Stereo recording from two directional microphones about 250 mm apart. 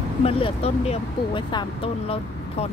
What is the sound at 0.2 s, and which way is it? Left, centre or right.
Speech, left.